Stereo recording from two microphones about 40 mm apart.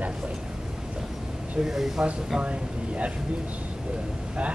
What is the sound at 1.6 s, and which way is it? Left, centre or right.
Speech, centre.